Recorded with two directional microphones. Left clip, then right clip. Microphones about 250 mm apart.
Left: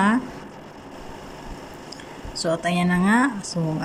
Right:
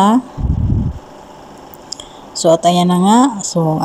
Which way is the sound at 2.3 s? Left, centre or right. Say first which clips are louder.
Right 13 dB; centre.